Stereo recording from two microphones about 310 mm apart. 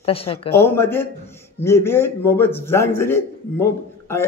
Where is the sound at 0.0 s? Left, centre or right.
Centre.